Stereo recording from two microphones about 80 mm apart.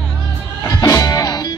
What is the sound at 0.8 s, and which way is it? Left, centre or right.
Music, left.